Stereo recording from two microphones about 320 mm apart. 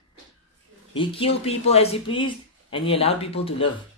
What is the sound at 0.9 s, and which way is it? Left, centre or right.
Speech, centre.